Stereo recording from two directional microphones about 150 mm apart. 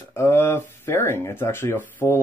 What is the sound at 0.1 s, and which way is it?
Speech, 15° left (ahead or behind).